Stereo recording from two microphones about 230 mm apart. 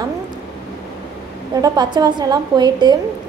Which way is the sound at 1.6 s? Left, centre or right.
Centre.